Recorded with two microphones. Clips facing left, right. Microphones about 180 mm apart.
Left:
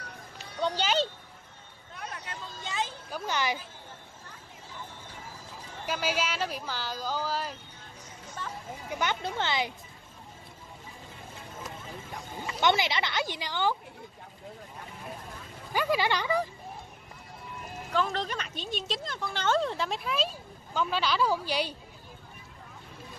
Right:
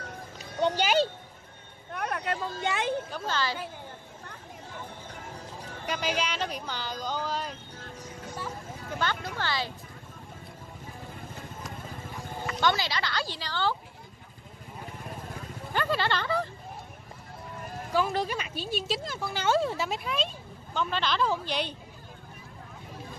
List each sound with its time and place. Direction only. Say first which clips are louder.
0.6 s speech: right 3 dB; 15° right (ahead or behind)
1.9 s speech: right 10 dB; 60° right (ahead or behind)
3.1 s a woman's voice: even; 15° left (ahead or behind)
5.9 s speech: even; 5° left (ahead or behind)
8.8 s speech: left 1 dB; 15° left (ahead or behind)
12.4 s speech: left 1 dB; 20° left (ahead or behind)
15.7 s speech: left 1 dB; 10° left (ahead or behind)
17.9 s speech: right 2 dB; 10° right (ahead or behind); by 21.7 s 10° left (ahead or behind)